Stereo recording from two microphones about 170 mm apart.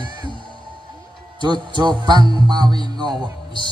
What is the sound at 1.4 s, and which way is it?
Music, 25° right (ahead or behind).